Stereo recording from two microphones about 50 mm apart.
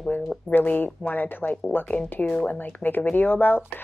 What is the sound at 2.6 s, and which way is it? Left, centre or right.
Speech, left.